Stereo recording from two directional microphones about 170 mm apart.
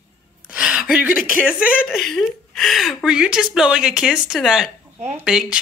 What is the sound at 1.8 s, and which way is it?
Speech, centre (ahead or behind).